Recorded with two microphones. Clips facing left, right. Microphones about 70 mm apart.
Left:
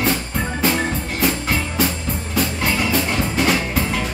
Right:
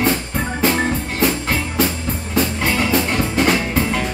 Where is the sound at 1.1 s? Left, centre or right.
Centre.